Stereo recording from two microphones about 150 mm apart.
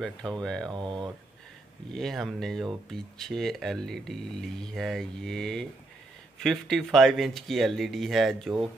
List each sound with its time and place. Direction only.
0.0 s speech: 5° left (ahead or behind)
0.7 s speech: 30° right (ahead or behind)
1.9 s speech: centre (ahead or behind)